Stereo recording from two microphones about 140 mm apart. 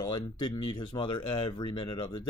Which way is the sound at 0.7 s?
35° left (ahead or behind).